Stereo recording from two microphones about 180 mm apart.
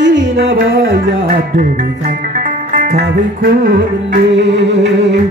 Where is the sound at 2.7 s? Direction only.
60° right (ahead or behind); by 5.1 s 75° right (ahead or behind).